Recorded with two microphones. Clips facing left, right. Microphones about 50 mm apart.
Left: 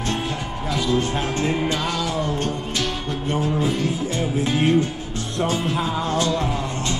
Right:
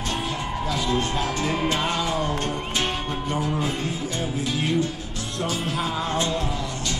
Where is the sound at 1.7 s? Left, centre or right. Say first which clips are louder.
Even; right.